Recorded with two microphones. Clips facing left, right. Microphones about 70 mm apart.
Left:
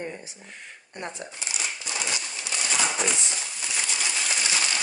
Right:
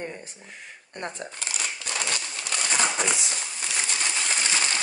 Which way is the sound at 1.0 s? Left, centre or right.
Right.